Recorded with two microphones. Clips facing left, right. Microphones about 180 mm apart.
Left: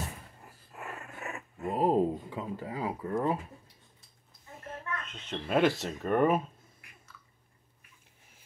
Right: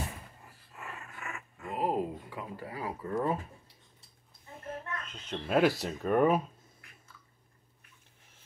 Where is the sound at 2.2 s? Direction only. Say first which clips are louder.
Left 4 dB; 25° left (ahead or behind).